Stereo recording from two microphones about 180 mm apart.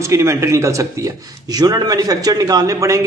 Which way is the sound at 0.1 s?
15° right (ahead or behind).